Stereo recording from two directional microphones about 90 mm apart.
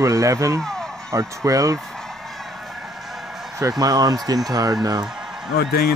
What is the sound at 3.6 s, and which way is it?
Speech, 40° right (ahead or behind).